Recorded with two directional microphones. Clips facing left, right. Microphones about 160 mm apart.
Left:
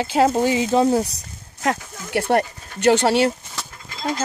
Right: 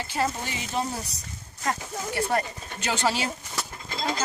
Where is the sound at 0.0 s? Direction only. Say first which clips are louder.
Left 11 dB; 90° left; by 3.3 s 65° left (ahead or behind).